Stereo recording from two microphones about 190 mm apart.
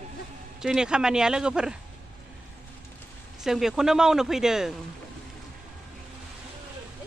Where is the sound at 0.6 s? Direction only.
5° right (ahead or behind).